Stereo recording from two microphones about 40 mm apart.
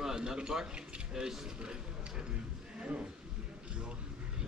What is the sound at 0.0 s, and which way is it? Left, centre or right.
Speech, centre.